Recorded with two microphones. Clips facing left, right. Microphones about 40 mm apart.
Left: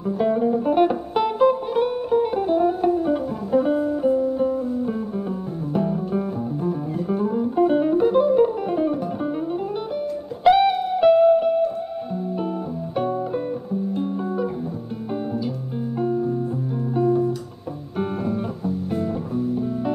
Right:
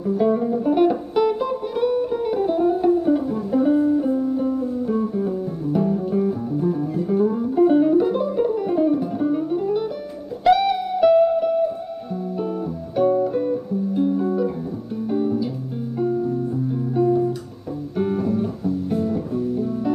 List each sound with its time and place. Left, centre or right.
0.3 s music: centre
12.9 s music: centre